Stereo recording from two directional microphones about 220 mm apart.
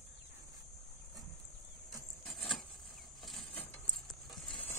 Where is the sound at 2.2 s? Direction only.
Centre (ahead or behind).